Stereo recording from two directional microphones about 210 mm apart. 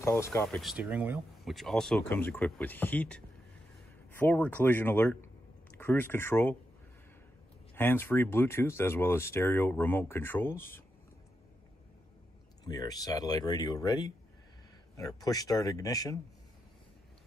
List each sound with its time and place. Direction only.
0.0 s speech: 10° left (ahead or behind)
0.6 s speech: 5° right (ahead or behind)
7.7 s speech: 10° left (ahead or behind)
12.6 s speech: 20° left (ahead or behind)